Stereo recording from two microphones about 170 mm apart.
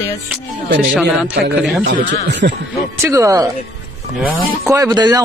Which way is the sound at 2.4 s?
70° right (ahead or behind).